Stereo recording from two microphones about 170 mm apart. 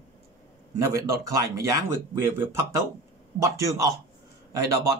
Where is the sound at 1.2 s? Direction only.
20° right (ahead or behind).